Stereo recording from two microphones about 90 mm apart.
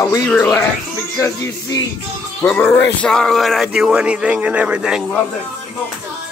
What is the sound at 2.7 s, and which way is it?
Speech, 10° left (ahead or behind).